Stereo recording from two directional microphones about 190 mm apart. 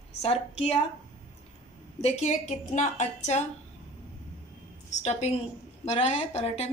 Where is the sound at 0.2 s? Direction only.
30° left (ahead or behind).